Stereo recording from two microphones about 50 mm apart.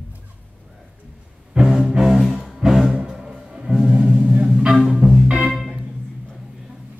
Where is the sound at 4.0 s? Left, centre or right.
Centre.